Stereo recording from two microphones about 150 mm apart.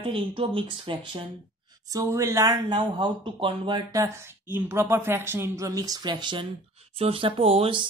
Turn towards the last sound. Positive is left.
turn(degrees=-35)  # may be behind; listen again after turning